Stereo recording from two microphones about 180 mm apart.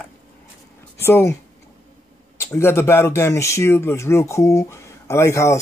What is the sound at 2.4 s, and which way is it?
Speech, 15° left (ahead or behind).